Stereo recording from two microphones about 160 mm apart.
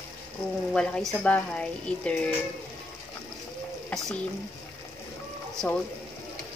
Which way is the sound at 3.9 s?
10° left (ahead or behind).